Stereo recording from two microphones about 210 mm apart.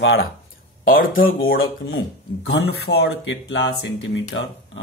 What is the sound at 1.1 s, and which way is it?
Speech, 70° left (ahead or behind).